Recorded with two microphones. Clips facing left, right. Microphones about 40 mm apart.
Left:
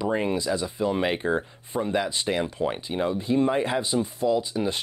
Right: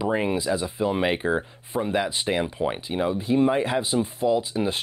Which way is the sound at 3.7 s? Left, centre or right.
Centre.